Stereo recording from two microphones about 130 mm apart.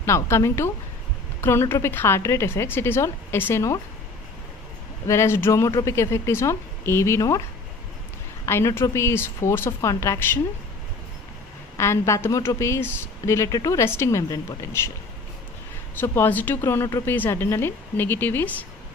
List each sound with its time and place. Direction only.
0.0 s a woman's voice: 20° left (ahead or behind)
5.0 s a woman's voice: 20° left (ahead or behind)
8.5 s a woman's voice: 20° left (ahead or behind)
11.7 s a woman's voice: 25° left (ahead or behind)
15.9 s a woman's voice: 15° left (ahead or behind)